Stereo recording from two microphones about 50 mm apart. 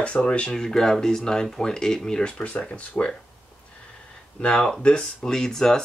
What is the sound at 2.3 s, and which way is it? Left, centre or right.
Speech, left.